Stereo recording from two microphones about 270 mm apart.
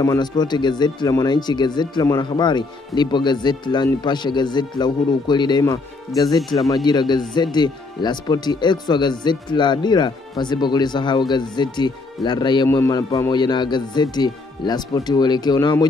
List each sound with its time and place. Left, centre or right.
0.0 s speech: centre